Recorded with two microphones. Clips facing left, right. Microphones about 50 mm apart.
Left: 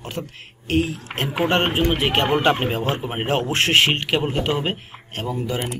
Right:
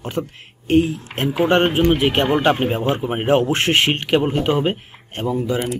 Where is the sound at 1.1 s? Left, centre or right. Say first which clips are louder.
Right 2 dB; left.